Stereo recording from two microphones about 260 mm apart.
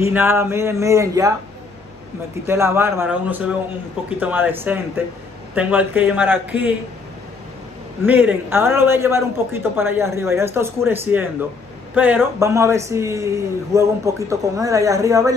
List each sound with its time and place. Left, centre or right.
0.0 s a man's voice: centre
2.4 s a man's voice: centre
8.0 s a man's voice: centre